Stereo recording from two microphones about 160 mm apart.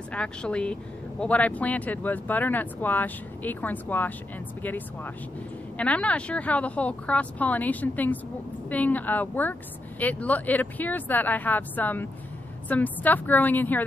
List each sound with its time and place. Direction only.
0.1 s speech: 5° left (ahead or behind)